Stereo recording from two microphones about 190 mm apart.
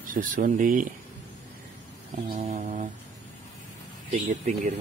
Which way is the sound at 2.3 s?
40° right (ahead or behind).